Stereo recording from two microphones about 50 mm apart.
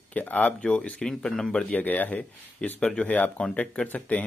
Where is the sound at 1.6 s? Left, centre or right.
Left.